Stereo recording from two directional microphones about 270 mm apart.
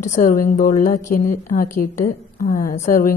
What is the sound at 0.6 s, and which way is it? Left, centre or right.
A woman's voice, left.